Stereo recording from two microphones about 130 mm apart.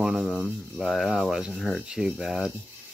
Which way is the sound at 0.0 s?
Centre (ahead or behind).